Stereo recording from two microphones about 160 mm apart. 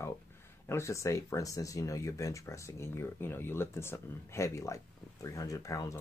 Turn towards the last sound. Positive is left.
turn(degrees=20)  # may be behind; listen again after turning